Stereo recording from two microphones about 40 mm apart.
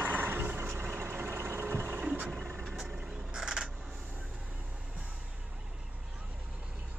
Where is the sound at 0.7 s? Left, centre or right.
Right.